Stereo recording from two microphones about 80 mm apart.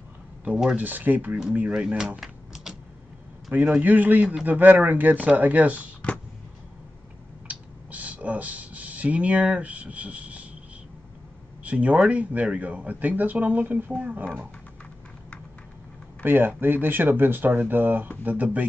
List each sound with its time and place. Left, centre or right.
0.5 s speech: centre
1.7 s speech: centre
2.1 s typing: centre
3.4 s a man's voice: centre
3.8 s speech: right
6.0 s a sound: centre
7.4 s a sound: centre
11.6 s speech: centre
16.2 s speech: right